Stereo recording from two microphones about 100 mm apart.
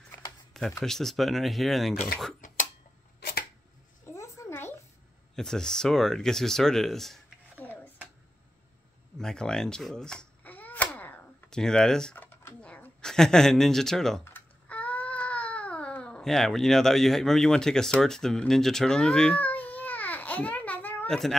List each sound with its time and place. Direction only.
0.5 s a sound: 5° left (ahead or behind)
0.8 s speech: 5° left (ahead or behind)
4.0 s a sound: 30° left (ahead or behind)
5.3 s speech: 5° left (ahead or behind)
7.5 s dishes: 20° left (ahead or behind)
9.2 s speech: 5° left (ahead or behind)
10.4 s babbling: 15° left (ahead or behind)
11.5 s speech: 5° left (ahead or behind)
12.2 s a sound: 20° left (ahead or behind)
14.2 s baby cry: 15° left (ahead or behind)
21.1 s speech: centre (ahead or behind)